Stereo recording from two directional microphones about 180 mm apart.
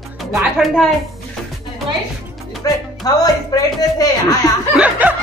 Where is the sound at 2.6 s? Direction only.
20° left (ahead or behind).